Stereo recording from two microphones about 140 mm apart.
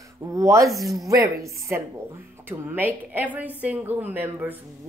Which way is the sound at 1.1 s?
20° right (ahead or behind).